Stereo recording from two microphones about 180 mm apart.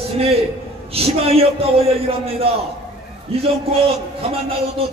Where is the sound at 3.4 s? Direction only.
30° right (ahead or behind).